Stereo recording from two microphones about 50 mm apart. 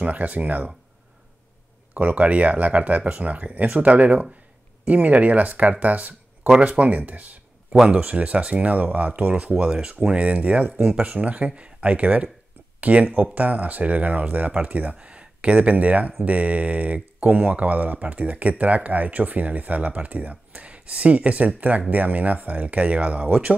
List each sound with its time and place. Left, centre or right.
0.0 s speech: right
2.0 s speech: right